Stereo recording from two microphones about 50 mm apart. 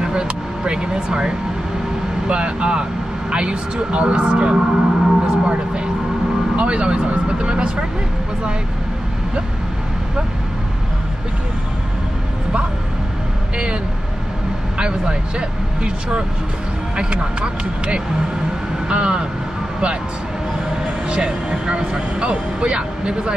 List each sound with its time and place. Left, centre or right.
0.0 s music: centre
2.2 s speech: right
14.8 s speech: centre
20.8 s speech: right